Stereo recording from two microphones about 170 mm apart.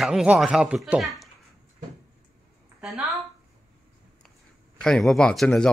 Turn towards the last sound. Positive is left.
turn(degrees=5)  # may be behind; listen again after turning